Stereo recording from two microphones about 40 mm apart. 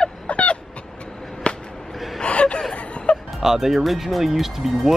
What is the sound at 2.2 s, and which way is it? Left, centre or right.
Gasp, left.